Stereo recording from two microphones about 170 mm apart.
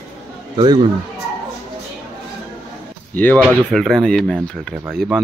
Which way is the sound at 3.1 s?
10° left (ahead or behind).